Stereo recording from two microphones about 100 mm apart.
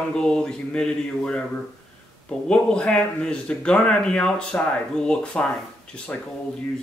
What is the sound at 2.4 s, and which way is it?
Speech, 5° left (ahead or behind).